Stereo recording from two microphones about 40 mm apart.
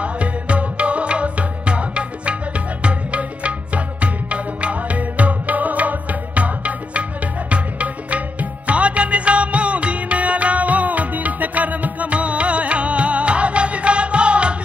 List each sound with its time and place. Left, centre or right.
0.0 s music: right